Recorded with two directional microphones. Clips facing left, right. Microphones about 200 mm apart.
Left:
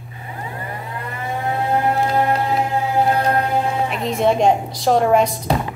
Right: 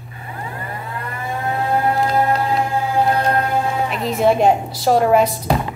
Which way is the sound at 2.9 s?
15° left (ahead or behind).